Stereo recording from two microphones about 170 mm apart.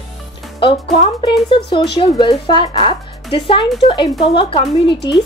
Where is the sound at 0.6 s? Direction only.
35° left (ahead or behind).